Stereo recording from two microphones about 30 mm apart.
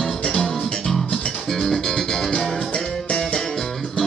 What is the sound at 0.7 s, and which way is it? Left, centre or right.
Music, left.